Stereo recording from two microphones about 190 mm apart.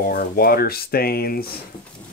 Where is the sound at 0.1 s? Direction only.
55° left (ahead or behind).